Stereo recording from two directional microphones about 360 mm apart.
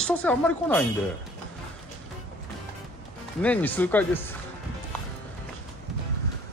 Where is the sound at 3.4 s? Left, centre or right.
Centre.